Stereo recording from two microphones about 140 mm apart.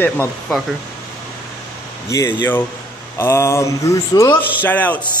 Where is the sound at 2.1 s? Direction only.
20° left (ahead or behind).